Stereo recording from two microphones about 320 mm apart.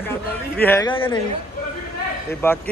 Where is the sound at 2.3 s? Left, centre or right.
Centre.